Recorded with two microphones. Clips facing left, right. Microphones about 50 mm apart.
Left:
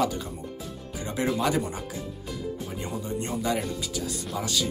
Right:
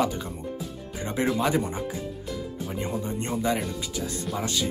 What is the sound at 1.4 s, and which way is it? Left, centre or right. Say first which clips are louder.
Speech: right 1 dB; right.